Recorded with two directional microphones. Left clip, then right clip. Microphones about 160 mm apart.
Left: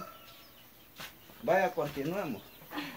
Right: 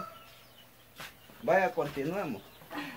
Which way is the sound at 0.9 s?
5° right (ahead or behind).